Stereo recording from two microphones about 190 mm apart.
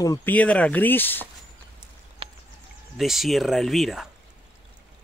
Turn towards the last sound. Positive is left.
turn(degrees=0)  # may be behind; listen again after turning